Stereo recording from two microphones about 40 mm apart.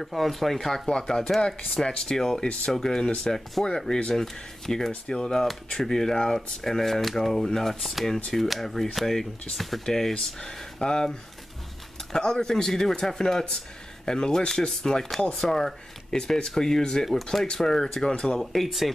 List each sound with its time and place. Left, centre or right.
0.0 s speech: centre
0.8 s speech: centre
12.1 s speech: centre
18.1 s speech: left
18.4 s speech: centre